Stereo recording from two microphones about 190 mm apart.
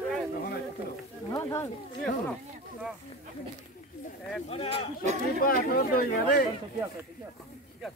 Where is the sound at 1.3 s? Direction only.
15° left (ahead or behind).